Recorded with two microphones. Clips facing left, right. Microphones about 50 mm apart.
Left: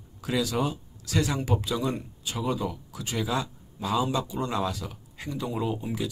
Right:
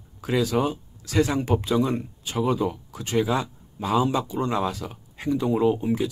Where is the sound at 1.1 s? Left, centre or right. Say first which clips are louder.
Right 5 dB; centre.